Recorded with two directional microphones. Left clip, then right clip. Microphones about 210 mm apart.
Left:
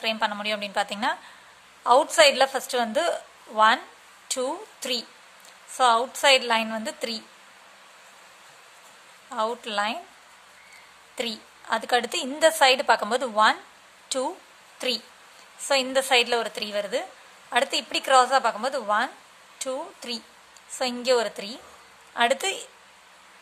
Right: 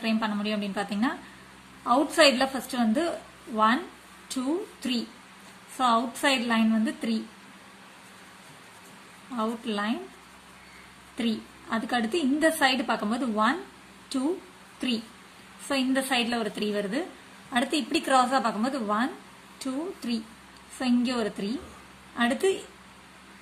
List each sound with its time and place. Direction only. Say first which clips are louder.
0.0 s a woman's voice: left 4 dB; 30° left (ahead or behind)
9.3 s a woman's voice: left 4 dB; 40° left (ahead or behind)
11.1 s a woman's voice: left 1 dB; 35° left (ahead or behind)
15.7 s a woman's voice: left 5 dB; 35° left (ahead or behind)